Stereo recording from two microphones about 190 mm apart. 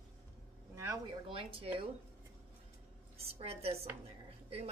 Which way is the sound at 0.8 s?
20° right (ahead or behind).